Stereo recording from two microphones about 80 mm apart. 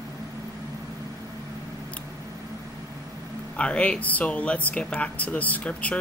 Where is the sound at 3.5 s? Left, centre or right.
Centre.